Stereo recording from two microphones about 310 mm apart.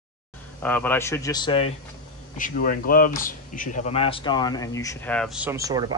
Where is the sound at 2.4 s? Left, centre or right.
Left.